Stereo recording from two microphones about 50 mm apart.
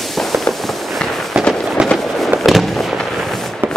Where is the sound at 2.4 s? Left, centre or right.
Centre.